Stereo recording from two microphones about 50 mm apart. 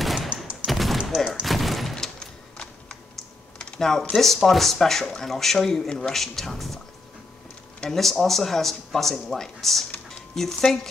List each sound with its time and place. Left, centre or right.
0.0 s fusillade: centre
0.7 s a sound: centre
2.1 s a sound: centre
3.5 s typing: centre
4.2 s speech: centre
7.9 s speech: centre